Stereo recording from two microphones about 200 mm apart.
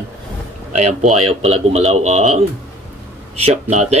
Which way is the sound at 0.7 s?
35° right (ahead or behind).